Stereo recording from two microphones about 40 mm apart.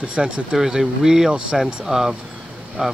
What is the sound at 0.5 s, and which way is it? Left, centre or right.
Speech, centre.